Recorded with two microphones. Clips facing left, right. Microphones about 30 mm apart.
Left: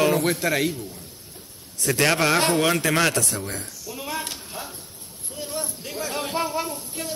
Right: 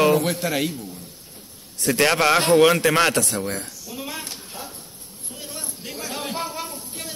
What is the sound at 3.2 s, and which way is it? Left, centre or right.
Speech, right.